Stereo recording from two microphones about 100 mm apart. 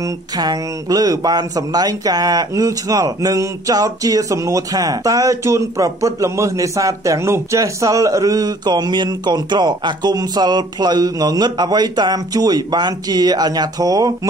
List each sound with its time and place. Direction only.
0.4 s speech: 40° right (ahead or behind)